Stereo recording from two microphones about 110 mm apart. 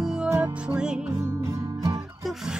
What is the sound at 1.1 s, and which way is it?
Music, 25° right (ahead or behind).